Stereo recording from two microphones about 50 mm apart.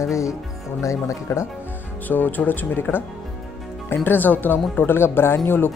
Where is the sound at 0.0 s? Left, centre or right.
Left.